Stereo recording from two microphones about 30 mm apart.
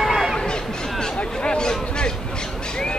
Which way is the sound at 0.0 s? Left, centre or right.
Centre.